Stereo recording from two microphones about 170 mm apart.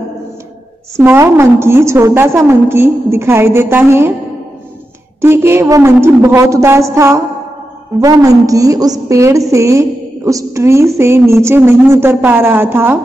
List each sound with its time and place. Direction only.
0.9 s a woman's voice: 15° right (ahead or behind)
5.2 s a woman's voice: 15° right (ahead or behind)